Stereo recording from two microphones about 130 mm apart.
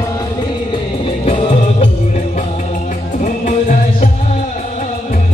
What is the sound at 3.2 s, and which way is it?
Music, 75° left (ahead or behind).